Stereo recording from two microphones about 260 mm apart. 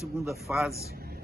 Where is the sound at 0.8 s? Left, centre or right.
Right.